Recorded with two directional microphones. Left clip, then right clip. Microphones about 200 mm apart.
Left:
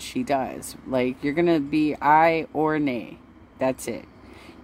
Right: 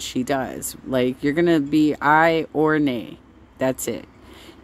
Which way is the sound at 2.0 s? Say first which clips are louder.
Even; 35° right (ahead or behind).